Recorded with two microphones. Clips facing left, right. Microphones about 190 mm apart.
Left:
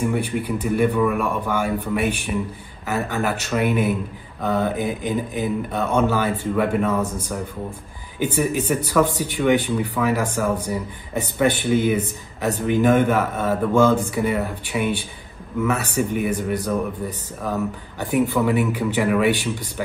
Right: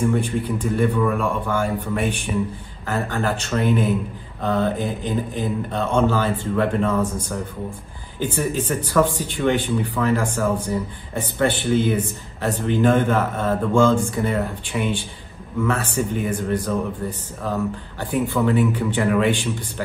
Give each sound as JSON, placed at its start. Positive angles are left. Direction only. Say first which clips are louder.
{"t": 0.1, "sound": "speech", "louder": "right 1 dB", "side_deg": 10}
{"t": 8.2, "sound": "speech", "louder": "left 2 dB", "side_deg": 10}